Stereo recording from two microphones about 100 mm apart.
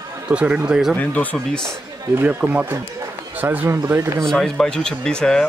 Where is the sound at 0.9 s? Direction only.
15° left (ahead or behind).